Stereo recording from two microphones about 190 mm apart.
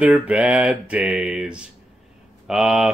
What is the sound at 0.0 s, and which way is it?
Speech, 5° right (ahead or behind).